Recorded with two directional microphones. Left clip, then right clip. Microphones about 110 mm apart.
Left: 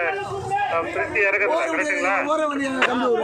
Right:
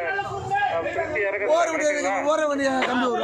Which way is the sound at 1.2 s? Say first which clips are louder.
Left 2 dB; 15° right (ahead or behind).